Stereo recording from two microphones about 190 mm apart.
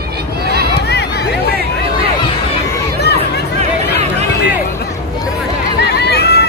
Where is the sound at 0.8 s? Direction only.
60° left (ahead or behind).